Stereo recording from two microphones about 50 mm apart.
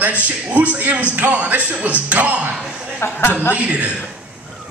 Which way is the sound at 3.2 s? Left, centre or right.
Left.